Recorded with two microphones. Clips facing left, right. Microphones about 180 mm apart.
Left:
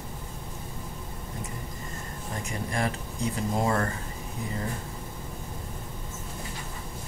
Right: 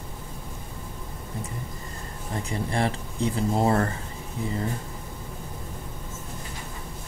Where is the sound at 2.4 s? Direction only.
30° right (ahead or behind).